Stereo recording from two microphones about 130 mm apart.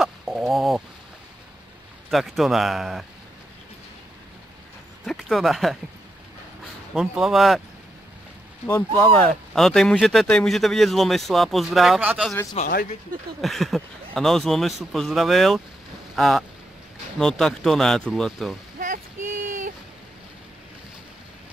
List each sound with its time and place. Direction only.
0.0 s chicken: centre (ahead or behind)
2.0 s speech: centre (ahead or behind)
5.0 s speech: centre (ahead or behind)
6.9 s speech: 5° right (ahead or behind)
8.6 s speech: 15° left (ahead or behind); by 12.0 s centre (ahead or behind)
12.0 s speech: 10° right (ahead or behind)
12.6 s speech: 55° left (ahead or behind)
13.4 s speech: centre (ahead or behind)
18.8 s a sound: 80° right